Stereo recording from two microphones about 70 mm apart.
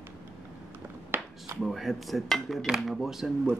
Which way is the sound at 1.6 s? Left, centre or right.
Centre.